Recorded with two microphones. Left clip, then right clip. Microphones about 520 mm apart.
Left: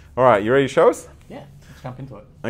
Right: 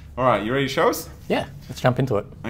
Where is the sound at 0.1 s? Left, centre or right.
Left.